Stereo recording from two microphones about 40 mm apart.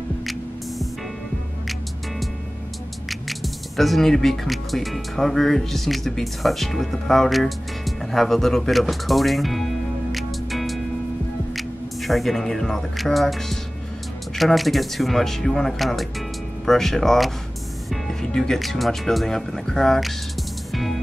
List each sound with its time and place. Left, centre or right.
0.2 s hum: centre
3.1 s speech: centre
10.1 s music: centre
11.5 s speech: centre
18.3 s speech: centre